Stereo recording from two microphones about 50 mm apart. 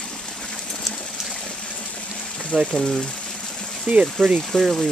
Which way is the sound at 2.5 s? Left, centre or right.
Centre.